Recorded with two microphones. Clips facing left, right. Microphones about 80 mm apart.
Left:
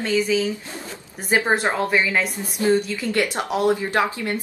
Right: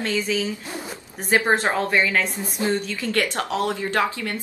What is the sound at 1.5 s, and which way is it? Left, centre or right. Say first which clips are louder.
Speech: even; centre.